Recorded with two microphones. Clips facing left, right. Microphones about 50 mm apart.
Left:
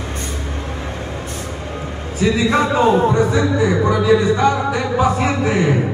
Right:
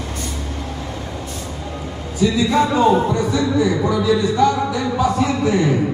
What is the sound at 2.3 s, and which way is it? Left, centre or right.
Speech, left.